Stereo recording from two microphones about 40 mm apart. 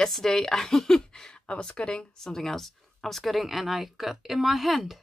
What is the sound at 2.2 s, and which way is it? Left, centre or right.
A woman's voice, centre.